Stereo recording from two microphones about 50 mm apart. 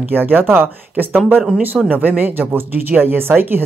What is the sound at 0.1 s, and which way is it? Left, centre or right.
Speech, right.